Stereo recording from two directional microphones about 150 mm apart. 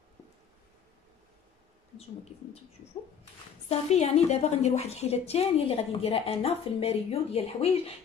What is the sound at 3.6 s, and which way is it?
A woman's voice, 45° left (ahead or behind).